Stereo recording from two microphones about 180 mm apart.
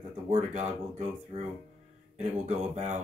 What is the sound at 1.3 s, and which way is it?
Speech, 30° right (ahead or behind).